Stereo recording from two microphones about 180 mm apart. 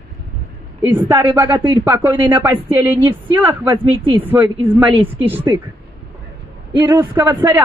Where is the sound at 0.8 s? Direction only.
10° right (ahead or behind).